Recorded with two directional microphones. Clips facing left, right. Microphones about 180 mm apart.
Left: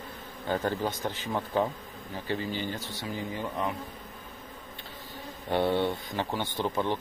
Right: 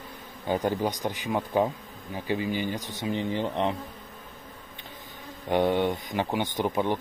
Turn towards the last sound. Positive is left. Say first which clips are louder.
# right 3 dB
turn(degrees=-15)  # may be behind; listen again after turning